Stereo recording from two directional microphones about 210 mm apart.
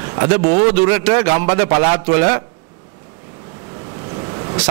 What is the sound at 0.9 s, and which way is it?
A man's voice, 15° right (ahead or behind).